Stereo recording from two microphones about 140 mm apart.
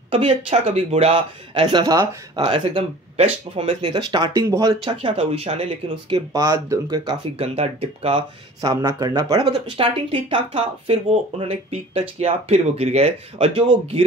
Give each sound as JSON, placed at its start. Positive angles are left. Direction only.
{"t": 0.1, "sound": "speech", "side_deg": -40}
{"t": 2.4, "sound": "speech", "side_deg": -45}
{"t": 4.9, "sound": "speech", "side_deg": -45}
{"t": 6.3, "sound": "speech", "side_deg": -25}
{"t": 7.4, "sound": "speech", "side_deg": -45}
{"t": 8.5, "sound": "speech", "side_deg": -25}
{"t": 9.4, "sound": "speech", "side_deg": -40}